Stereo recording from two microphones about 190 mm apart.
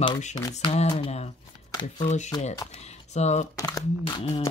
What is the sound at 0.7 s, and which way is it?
Speech, 30° left (ahead or behind).